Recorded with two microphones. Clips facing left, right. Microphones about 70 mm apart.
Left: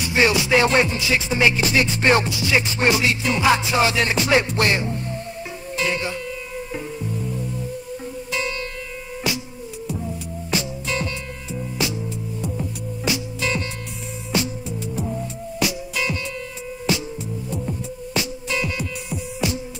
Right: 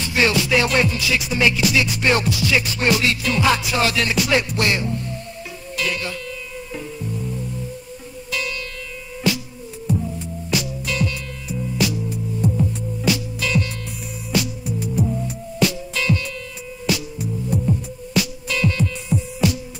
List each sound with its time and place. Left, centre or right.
0.0 s music: left
8.3 s music: left
10.5 s music: left
13.0 s music: left
18.1 s music: left